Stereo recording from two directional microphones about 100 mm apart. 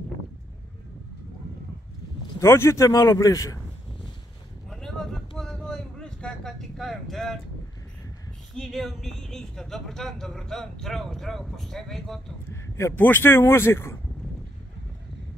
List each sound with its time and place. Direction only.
2.4 s speech: 25° left (ahead or behind)
4.6 s vehicle: 5° left (ahead or behind)
8.5 s a woman's voice: centre (ahead or behind)
12.4 s speech: 25° left (ahead or behind)